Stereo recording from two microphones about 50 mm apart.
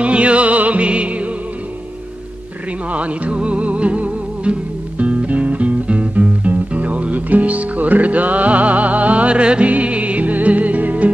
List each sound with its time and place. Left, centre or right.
0.0 s music: right
2.9 s music: right